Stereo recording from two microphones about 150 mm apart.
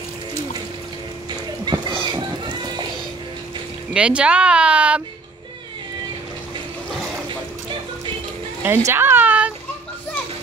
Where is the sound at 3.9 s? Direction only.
5° right (ahead or behind).